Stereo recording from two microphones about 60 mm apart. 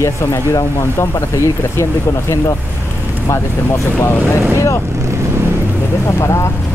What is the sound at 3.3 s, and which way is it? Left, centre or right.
Speech, left.